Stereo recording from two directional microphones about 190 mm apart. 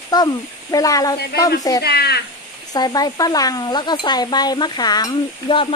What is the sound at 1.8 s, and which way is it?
Speech, 55° left (ahead or behind).